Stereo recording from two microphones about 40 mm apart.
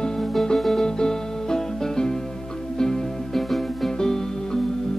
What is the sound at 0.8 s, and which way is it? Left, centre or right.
Music, centre.